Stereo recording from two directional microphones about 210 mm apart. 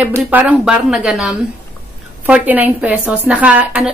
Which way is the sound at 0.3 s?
5° right (ahead or behind).